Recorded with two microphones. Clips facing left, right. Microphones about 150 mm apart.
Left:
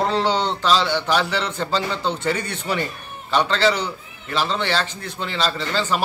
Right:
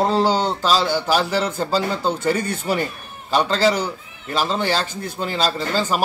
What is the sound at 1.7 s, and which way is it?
Speech, 40° right (ahead or behind).